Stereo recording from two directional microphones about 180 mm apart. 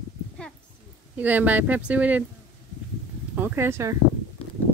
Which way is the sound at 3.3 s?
10° right (ahead or behind).